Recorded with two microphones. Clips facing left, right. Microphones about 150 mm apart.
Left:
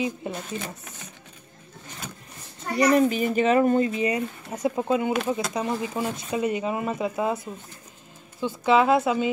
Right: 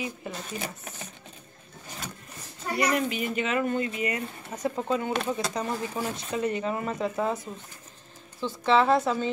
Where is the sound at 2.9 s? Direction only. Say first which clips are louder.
Left 7 dB; 35° left (ahead or behind).